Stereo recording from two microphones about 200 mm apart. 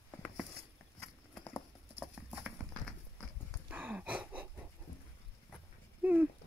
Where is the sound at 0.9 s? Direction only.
5° left (ahead or behind).